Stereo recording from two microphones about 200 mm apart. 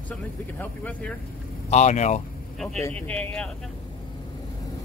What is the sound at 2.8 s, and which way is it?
Speech, 5° left (ahead or behind).